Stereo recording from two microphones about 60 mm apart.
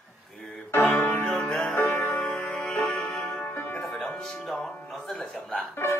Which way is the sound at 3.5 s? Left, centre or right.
Left.